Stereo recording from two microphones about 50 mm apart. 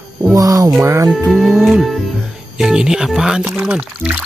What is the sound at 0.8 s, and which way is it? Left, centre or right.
Speech, right.